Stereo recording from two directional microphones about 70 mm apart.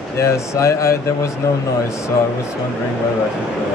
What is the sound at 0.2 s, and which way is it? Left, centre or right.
A man's voice, left.